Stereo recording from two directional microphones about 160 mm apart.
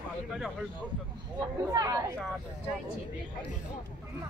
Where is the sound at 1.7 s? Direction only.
20° right (ahead or behind).